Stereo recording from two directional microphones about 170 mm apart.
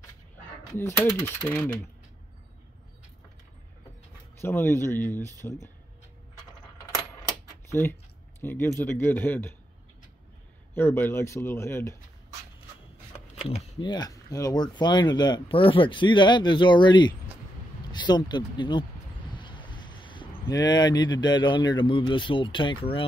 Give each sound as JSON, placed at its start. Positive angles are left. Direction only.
{"t": 0.7, "sound": "speech", "side_deg": 15}
{"t": 4.4, "sound": "speech", "side_deg": 15}
{"t": 8.4, "sound": "speech", "side_deg": 10}
{"t": 10.7, "sound": "speech", "side_deg": 15}
{"t": 13.4, "sound": "speech", "side_deg": 35}